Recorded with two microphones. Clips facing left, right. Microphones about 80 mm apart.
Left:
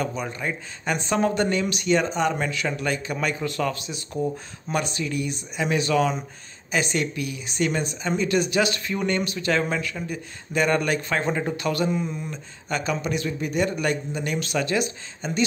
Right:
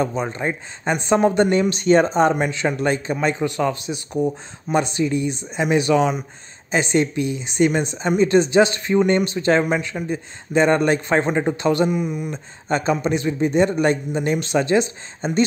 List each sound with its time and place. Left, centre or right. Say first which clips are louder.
0.0 s speech: right 6 dB; right
2.3 s speech: right 5 dB; right
11.9 s speech: right 4 dB; centre
12.6 s speech: right 6 dB; right